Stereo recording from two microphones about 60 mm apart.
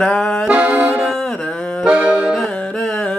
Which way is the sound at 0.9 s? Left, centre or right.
Centre.